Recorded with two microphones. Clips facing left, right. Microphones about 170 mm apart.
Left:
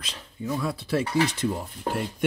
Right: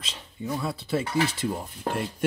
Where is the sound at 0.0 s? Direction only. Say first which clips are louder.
Left 1 dB; 20° right (ahead or behind).